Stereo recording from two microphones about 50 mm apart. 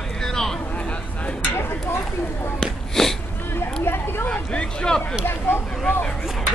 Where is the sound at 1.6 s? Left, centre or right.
Left.